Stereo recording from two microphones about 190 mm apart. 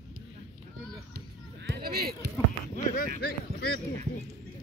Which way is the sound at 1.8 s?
55° right (ahead or behind).